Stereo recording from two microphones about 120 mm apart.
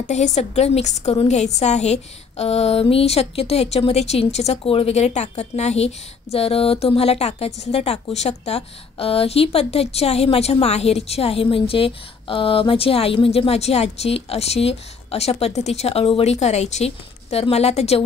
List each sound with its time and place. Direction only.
0.0 s a woman's voice: 75° left (ahead or behind); by 18.0 s 60° left (ahead or behind)